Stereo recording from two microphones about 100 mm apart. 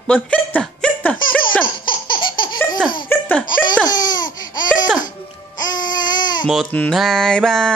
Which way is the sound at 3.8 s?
45° left (ahead or behind).